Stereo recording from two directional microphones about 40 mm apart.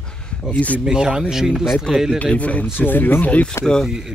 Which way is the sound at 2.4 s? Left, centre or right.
Left.